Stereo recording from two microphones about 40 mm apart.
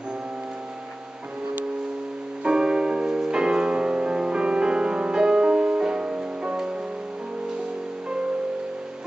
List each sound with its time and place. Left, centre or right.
2.4 s music: centre